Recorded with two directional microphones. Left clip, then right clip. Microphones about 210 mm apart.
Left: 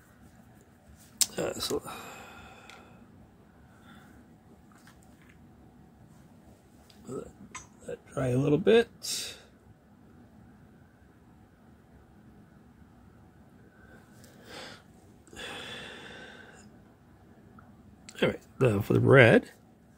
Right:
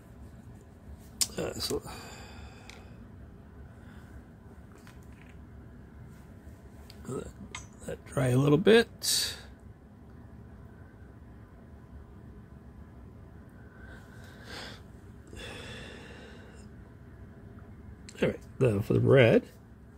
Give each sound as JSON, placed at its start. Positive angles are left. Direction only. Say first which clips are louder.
{"t": 1.1, "sound": "a sound", "louder": "left 3 dB", "side_deg": 5}
{"t": 7.8, "sound": "speech", "louder": "right 1 dB", "side_deg": -30}
{"t": 14.4, "sound": "snort", "louder": "right 1 dB", "side_deg": -5}
{"t": 15.3, "sound": "gasp", "louder": "left 3 dB", "side_deg": 5}
{"t": 18.0, "sound": "speech", "louder": "left 2 dB", "side_deg": 5}